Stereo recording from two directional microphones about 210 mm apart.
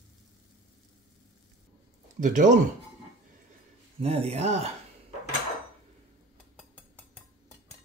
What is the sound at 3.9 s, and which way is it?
Speech, 30° right (ahead or behind).